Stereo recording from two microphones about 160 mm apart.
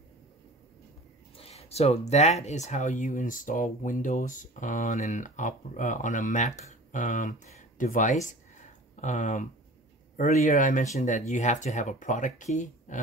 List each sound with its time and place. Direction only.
1.3 s speech: 40° left (ahead or behind)